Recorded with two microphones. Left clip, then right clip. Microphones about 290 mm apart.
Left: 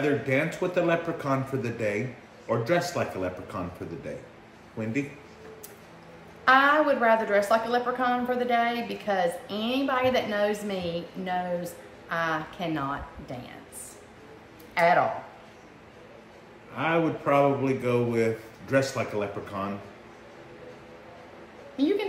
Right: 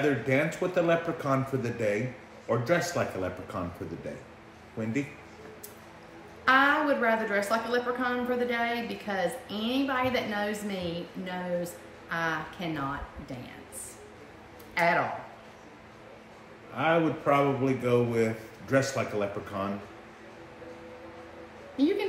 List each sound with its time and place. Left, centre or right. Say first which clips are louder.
0.3 s a man's voice: left 1 dB; centre
4.8 s a man's voice: left 1 dB; centre
6.4 s a woman's voice: left 3 dB; centre
14.7 s a sound: left 4 dB; centre
16.7 s a man's voice: even; centre
21.7 s a woman's voice: left 1 dB; centre